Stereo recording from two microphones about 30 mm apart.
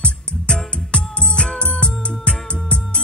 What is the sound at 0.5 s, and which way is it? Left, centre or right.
Music, left.